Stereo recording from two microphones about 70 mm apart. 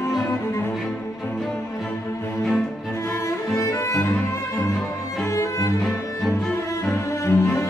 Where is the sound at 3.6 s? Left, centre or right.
Left.